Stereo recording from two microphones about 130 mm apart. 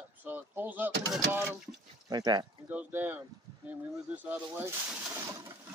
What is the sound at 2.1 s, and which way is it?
Speech, 35° right (ahead or behind).